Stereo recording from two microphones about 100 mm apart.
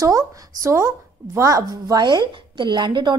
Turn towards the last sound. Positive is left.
turn(degrees=-50)  # may be behind; listen again after turning